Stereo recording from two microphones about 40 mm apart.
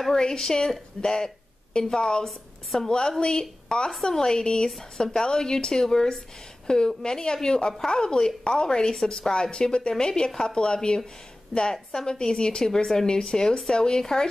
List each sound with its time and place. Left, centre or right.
0.1 s a woman's voice: centre
2.2 s a woman's voice: centre
2.9 s a woman's voice: centre
4.6 s a woman's voice: centre
11.7 s speech: centre